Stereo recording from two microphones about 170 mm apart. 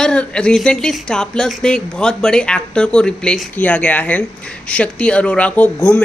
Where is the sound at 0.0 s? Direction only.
5° left (ahead or behind).